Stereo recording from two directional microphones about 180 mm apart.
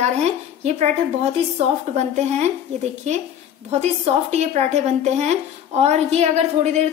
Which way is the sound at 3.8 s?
35° right (ahead or behind).